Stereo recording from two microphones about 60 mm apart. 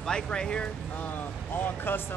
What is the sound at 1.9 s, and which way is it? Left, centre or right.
Speech, left.